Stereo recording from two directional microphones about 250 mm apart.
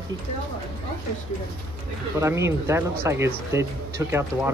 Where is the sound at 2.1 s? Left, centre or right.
Centre.